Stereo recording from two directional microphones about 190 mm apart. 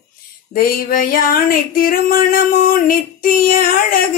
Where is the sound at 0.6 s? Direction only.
50° left (ahead or behind).